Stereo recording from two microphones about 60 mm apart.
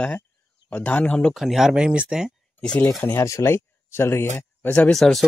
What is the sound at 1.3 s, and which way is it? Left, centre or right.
Speech, centre.